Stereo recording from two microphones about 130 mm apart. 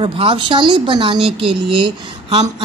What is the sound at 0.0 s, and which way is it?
Speech, 45° right (ahead or behind).